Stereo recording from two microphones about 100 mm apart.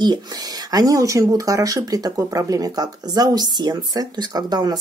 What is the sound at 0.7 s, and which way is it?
Speech, 35° right (ahead or behind).